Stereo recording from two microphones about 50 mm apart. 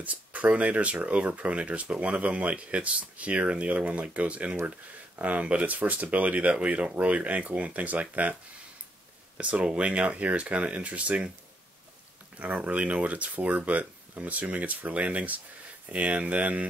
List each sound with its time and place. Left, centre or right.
0.0 s speech: right
9.4 s speech: right
12.4 s speech: right